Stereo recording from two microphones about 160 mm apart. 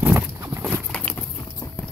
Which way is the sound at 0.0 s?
10° right (ahead or behind).